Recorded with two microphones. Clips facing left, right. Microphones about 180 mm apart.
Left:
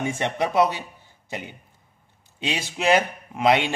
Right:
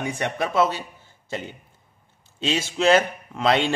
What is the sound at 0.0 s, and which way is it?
Speech, 20° left (ahead or behind).